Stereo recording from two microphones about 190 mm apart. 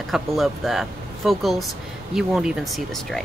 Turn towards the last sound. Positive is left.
turn(degrees=0)  # may be behind; listen again after turning